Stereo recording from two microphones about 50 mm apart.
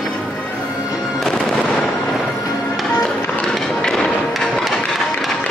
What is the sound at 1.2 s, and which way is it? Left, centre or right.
Fireworks, centre.